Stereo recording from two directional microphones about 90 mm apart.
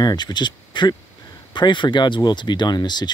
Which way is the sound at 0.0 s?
50° left (ahead or behind).